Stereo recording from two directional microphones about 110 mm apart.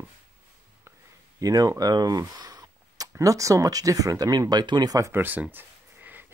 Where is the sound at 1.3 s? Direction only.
30° right (ahead or behind).